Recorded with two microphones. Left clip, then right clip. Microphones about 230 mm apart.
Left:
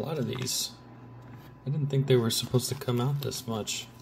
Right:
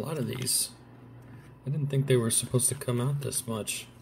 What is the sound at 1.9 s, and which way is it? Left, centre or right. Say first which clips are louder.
Speech: left 1 dB; centre.